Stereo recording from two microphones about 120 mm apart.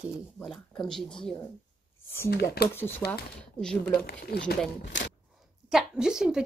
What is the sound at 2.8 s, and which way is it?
Speech, 20° left (ahead or behind).